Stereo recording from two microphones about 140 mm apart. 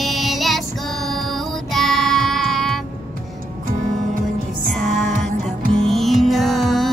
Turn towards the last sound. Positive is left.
turn(degrees=0)  # may be behind; listen again after turning